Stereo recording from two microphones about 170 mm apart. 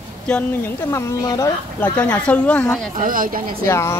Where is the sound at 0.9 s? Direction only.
20° left (ahead or behind).